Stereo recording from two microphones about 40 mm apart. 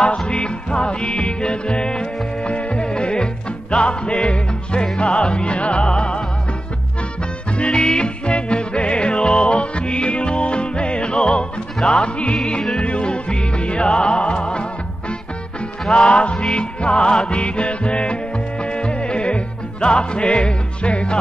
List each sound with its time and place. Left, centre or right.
0.0 s music: left
7.5 s music: left